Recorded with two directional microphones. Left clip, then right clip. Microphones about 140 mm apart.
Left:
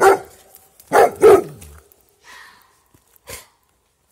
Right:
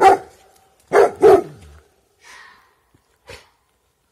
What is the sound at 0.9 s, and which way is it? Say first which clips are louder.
Dog: left 1 dB; 40° left (ahead or behind).